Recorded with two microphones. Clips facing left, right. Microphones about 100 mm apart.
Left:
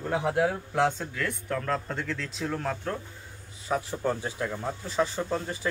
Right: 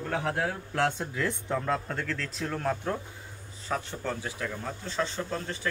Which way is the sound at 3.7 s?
15° left (ahead or behind).